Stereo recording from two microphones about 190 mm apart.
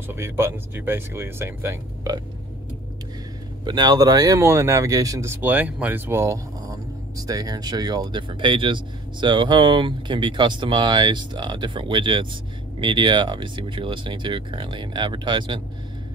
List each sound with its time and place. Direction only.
0.1 s speech: 15° right (ahead or behind)
3.6 s speech: 20° right (ahead or behind)